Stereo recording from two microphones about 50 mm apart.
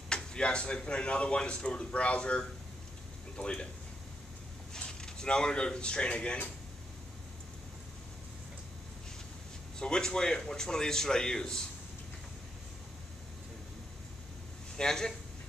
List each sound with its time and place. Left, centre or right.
0.1 s a man's voice: centre
4.7 s speech: centre
9.8 s a man's voice: centre
14.8 s a man's voice: centre